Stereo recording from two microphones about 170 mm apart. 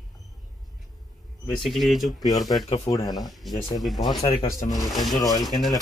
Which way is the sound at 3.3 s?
Centre (ahead or behind).